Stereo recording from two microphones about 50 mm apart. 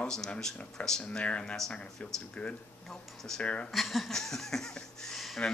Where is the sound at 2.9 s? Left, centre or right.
Centre.